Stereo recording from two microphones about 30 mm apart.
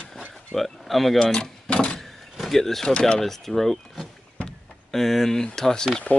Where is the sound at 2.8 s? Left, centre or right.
Left.